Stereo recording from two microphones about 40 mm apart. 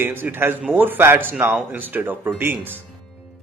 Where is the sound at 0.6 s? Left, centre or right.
Right.